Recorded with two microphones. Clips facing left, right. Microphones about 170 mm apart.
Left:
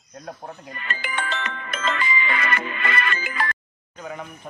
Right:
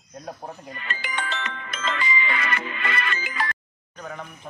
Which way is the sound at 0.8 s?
55° left (ahead or behind).